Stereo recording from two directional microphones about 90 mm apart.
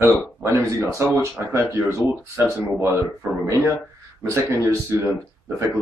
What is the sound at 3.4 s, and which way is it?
Speech, 35° right (ahead or behind).